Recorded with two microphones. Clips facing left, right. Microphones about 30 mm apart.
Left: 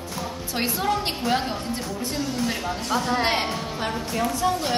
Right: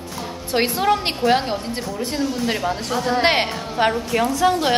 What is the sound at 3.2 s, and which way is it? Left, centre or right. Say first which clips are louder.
Speech: right 6 dB; right.